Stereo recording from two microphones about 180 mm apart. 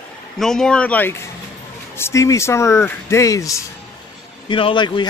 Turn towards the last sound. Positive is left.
turn(degrees=25)  # may be behind; listen again after turning